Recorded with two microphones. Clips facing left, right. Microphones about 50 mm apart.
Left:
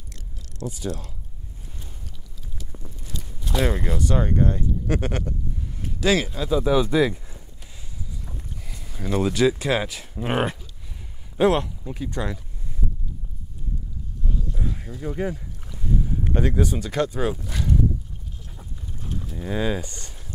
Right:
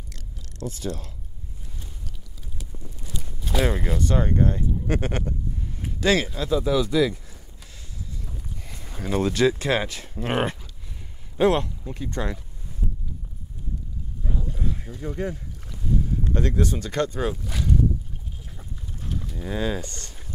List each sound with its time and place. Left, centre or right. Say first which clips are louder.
0.1 s a sound: even; centre
3.4 s speech: even; centre
6.7 s speech: left 2 dB; left
8.7 s a sound: right 2 dB; centre
9.0 s speech: left 1 dB; centre
14.6 s boat: left 1 dB; centre
18.6 s livestock: left 1 dB; centre